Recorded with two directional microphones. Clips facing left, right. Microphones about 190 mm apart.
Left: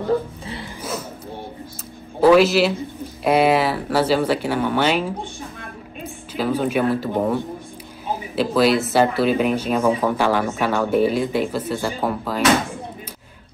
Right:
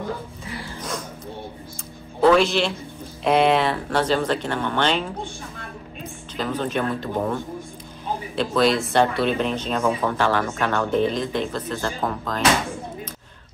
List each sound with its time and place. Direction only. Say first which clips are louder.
2.1 s a man's voice: left 4 dB; 5° left (ahead or behind)
6.3 s speech: left 4 dB; 10° left (ahead or behind)
8.4 s speech: left 3 dB; 5° left (ahead or behind)